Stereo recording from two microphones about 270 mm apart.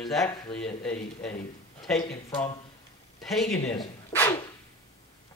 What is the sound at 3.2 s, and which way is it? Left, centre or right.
Speech, centre.